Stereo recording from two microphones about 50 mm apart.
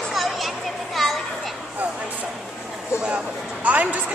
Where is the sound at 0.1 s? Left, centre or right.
Centre.